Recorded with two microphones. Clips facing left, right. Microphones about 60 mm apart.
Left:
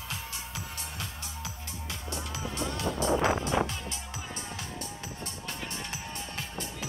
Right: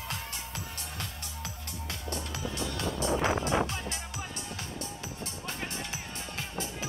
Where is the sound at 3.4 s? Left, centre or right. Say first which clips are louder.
Even; right.